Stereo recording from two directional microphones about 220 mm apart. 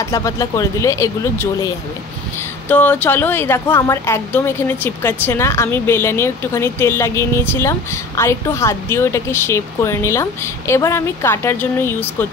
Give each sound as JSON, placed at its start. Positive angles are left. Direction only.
{"t": 0.0, "sound": "a woman's voice", "side_deg": 15}
{"t": 2.7, "sound": "a woman's voice", "side_deg": 10}